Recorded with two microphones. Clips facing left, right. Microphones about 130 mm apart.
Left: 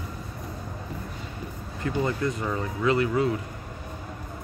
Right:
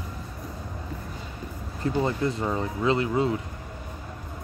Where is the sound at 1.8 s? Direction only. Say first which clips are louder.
Right 1 dB; 25° right (ahead or behind).